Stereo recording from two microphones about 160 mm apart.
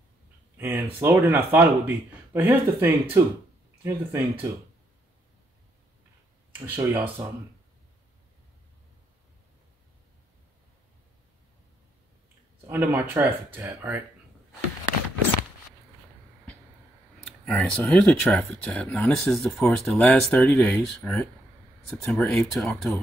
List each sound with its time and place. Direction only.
0.6 s speech: 15° right (ahead or behind)
6.6 s speech: 10° right (ahead or behind)
12.6 s speech: 10° right (ahead or behind)
17.5 s speech: 5° left (ahead or behind)